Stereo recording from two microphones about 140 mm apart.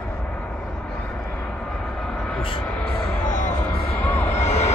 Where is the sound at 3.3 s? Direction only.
60° left (ahead or behind).